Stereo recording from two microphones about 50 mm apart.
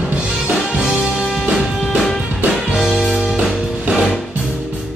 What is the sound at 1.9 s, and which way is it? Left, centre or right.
Music, centre.